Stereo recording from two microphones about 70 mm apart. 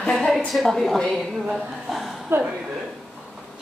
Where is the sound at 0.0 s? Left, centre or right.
Centre.